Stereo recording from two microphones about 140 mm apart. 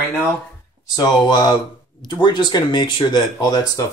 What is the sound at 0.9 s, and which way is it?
Speech, 25° left (ahead or behind).